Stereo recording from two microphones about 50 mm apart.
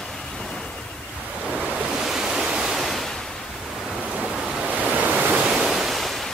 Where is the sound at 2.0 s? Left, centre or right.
Centre.